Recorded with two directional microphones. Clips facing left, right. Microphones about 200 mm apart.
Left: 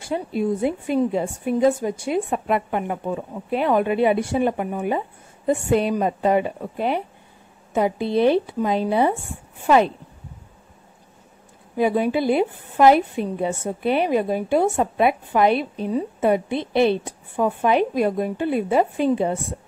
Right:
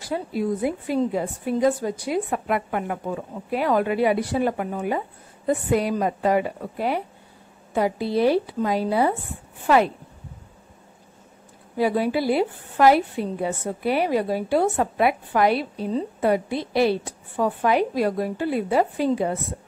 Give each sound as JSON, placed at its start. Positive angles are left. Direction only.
{"t": 0.0, "sound": "a woman's voice", "side_deg": 25}
{"t": 11.7, "sound": "a woman's voice", "side_deg": 20}